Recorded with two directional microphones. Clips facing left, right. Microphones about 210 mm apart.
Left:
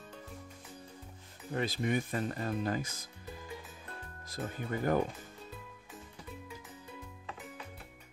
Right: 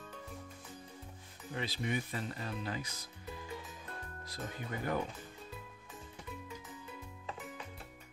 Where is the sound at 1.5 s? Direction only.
45° left (ahead or behind).